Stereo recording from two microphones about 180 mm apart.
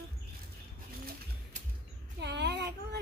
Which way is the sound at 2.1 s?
70° right (ahead or behind).